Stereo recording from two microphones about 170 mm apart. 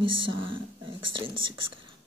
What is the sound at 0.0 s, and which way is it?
Speech, 30° right (ahead or behind).